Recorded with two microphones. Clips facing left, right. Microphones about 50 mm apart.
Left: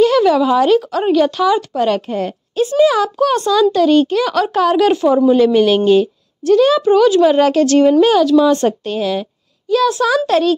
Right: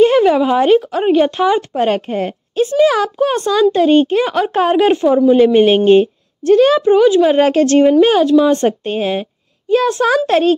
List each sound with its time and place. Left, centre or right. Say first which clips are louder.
0.0 s a child's voice: right 1 dB; right
5.0 s a woman's voice: right 2 dB; centre; by 10.5 s right